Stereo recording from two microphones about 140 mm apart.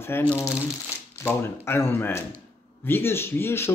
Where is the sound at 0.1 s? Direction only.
15° left (ahead or behind).